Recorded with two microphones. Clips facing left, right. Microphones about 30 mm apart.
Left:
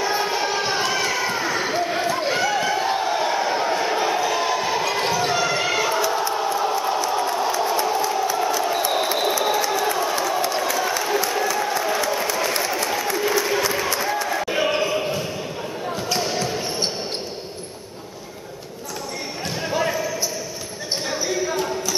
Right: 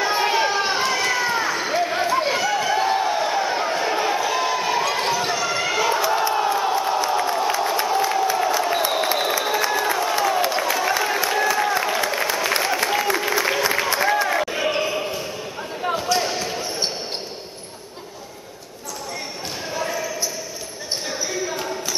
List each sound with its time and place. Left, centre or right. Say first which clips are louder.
0.5 s run: right 1 dB; centre
1.5 s a sound: even; centre
5.3 s basketball bounce: left 2 dB; centre
5.7 s crowd: right 1 dB; centre
10.8 s applause: right 1 dB; centre
14.5 s basketball bounce: left 1 dB; centre
16.2 s basketball bounce: even; centre
19.7 s basketball bounce: left 3 dB; centre